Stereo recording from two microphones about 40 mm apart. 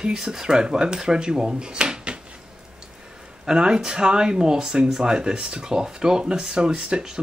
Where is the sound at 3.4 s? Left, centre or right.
Right.